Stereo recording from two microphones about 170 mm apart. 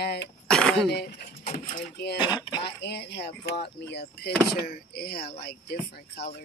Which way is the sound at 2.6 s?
80° left.